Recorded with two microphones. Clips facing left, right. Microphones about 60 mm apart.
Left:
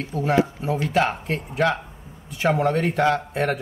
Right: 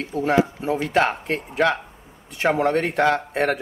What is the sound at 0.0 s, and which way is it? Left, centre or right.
Speech, right.